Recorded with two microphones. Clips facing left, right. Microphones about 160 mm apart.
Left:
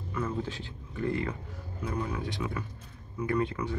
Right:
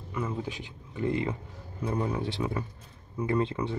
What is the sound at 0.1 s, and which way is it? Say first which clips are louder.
Speech: even; 15° right (ahead or behind).